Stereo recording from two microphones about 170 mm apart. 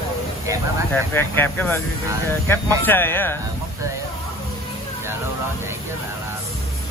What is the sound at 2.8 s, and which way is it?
Speech, 10° left (ahead or behind).